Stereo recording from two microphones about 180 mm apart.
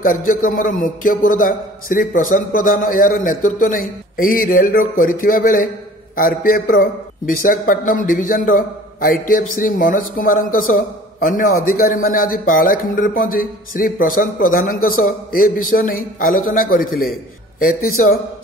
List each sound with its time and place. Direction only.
0.0 s a man's voice: 50° left (ahead or behind)